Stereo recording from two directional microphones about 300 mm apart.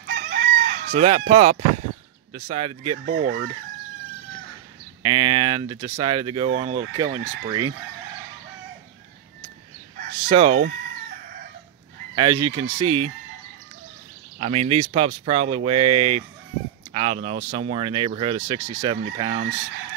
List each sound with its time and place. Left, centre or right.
0.0 s chicken: right
0.9 s speech: right
3.2 s speech: right
5.0 s speech: centre
9.9 s fowl: right
12.2 s speech: centre
14.4 s speech: centre